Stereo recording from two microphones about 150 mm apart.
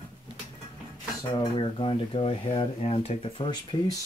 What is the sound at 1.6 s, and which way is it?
Speech, 35° left (ahead or behind).